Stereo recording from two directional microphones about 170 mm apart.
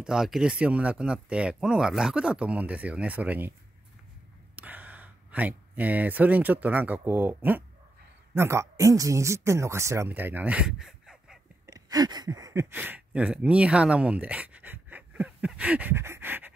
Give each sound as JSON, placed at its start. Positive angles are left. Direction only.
{"t": 0.0, "sound": "speech", "side_deg": -5}
{"t": 4.6, "sound": "speech", "side_deg": -10}
{"t": 11.6, "sound": "speech", "side_deg": -20}